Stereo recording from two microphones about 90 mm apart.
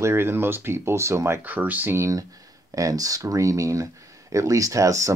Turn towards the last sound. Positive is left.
turn(degrees=-35)  # may be behind; listen again after turning